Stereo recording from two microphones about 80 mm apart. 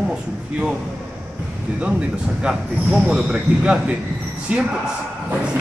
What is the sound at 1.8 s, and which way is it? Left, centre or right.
Speech, centre.